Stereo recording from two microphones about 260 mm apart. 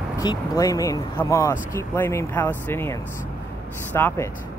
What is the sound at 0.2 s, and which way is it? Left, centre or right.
Speech, centre.